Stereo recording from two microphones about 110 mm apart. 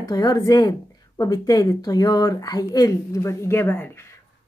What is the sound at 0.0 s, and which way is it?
Speech, 40° left (ahead or behind).